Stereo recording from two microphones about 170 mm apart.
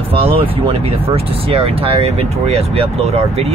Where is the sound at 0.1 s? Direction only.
35° right (ahead or behind).